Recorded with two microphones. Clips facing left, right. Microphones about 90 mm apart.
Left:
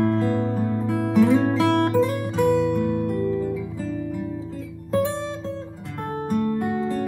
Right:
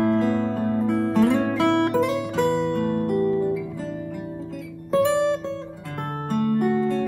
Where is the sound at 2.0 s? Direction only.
70° right (ahead or behind).